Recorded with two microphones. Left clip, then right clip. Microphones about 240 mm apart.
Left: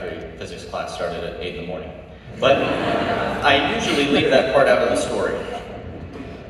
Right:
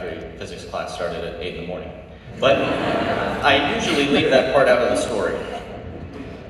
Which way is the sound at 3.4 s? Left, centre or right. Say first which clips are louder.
Even; left.